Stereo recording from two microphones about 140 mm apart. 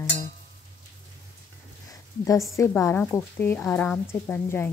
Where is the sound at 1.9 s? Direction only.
20° left (ahead or behind).